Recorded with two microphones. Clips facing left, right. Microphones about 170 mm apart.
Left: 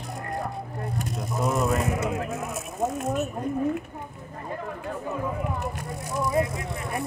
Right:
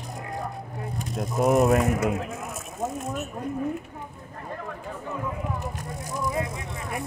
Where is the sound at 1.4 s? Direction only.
55° right (ahead or behind).